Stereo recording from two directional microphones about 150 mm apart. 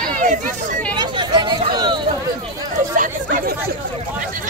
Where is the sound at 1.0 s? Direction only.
30° right (ahead or behind).